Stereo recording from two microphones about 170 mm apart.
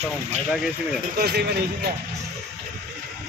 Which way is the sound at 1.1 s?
70° right (ahead or behind).